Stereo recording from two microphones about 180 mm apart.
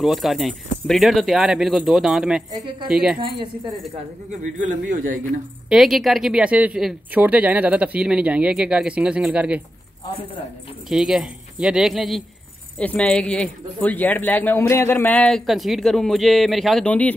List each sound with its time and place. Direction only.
0.0 s speech: centre (ahead or behind)
4.3 s a man's voice: 45° right (ahead or behind)
5.7 s speech: centre (ahead or behind)
10.9 s speech: 5° right (ahead or behind)